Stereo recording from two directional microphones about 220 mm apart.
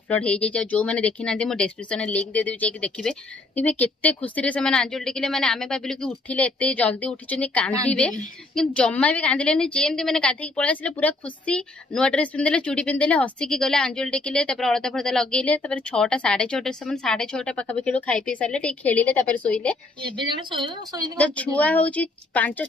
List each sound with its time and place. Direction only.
0.1 s a woman's voice: 5° left (ahead or behind)
20.2 s a woman's voice: 20° right (ahead or behind)
21.2 s a woman's voice: 5° left (ahead or behind)